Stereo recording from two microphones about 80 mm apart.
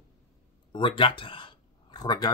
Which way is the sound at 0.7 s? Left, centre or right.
Left.